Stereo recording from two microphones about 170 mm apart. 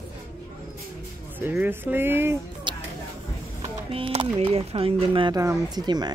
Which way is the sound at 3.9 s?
35° right (ahead or behind).